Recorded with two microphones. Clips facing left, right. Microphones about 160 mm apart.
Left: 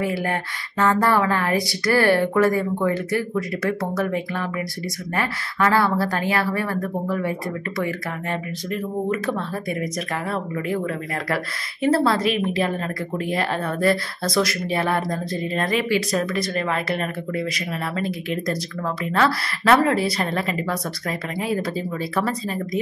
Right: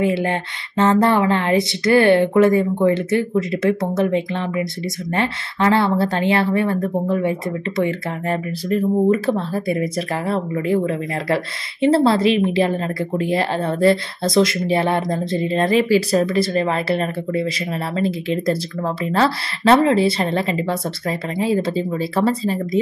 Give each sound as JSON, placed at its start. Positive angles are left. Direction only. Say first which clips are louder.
{"t": 0.0, "sound": "speech", "louder": "right 5 dB", "side_deg": -25}
{"t": 8.3, "sound": "speech", "louder": "right 8 dB", "side_deg": -35}